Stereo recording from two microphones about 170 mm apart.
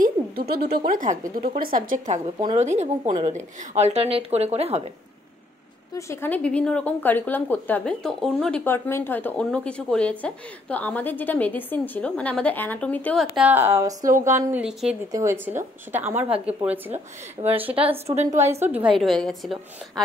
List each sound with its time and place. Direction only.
0.0 s a woman's voice: 65° right (ahead or behind); by 4.8 s 40° right (ahead or behind)
5.9 s a woman's voice: 15° left (ahead or behind)
13.5 s a woman's voice: 15° right (ahead or behind)
15.0 s a woman's voice: 20° right (ahead or behind)
17.6 s speech: 35° right (ahead or behind)
18.6 s a woman's voice: 10° right (ahead or behind)
18.9 s a woman's voice: centre (ahead or behind)